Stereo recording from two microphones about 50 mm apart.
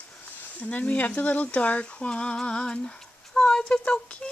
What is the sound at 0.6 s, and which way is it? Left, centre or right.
A woman's voice, left.